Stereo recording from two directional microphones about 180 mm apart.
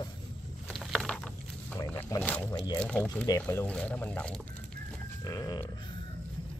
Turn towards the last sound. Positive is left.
turn(degrees=20)  # may be behind; listen again after turning